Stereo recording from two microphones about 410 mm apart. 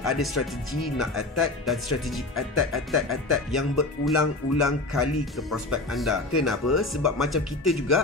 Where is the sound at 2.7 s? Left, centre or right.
Centre.